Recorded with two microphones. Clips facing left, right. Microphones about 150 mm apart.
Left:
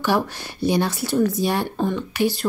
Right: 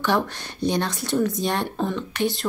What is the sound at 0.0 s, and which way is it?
Speech, 5° left (ahead or behind).